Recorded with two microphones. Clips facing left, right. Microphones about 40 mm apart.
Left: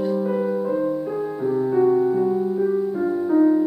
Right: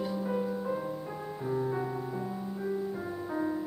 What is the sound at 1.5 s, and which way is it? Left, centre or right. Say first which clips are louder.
Music: left 14 dB; centre.